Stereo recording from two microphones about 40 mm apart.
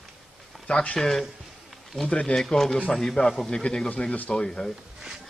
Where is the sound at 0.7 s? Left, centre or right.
Left.